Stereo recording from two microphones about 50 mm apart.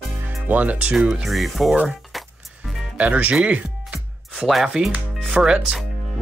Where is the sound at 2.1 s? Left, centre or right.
Centre.